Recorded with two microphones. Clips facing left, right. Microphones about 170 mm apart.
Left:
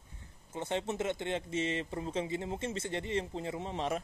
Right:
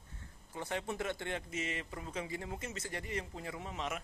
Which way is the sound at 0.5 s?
25° left (ahead or behind).